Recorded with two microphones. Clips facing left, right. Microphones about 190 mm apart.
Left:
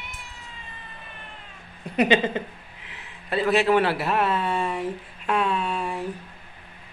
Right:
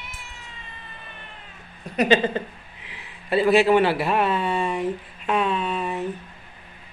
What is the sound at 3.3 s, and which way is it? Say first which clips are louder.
A man's voice: right 3 dB; 5° right (ahead or behind).